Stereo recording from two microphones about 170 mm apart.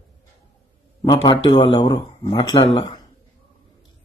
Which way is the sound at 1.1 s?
30° left (ahead or behind).